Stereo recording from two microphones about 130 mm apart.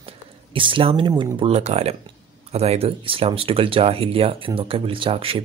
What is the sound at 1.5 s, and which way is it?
Speech, 55° right (ahead or behind).